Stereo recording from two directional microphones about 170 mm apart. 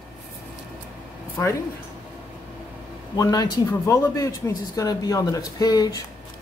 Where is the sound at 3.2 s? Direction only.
20° left (ahead or behind).